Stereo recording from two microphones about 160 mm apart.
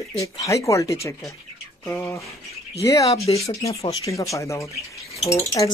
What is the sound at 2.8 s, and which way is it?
Speech, 20° left (ahead or behind).